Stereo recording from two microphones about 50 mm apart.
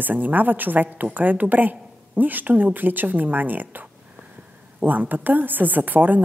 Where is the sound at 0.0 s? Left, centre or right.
Right.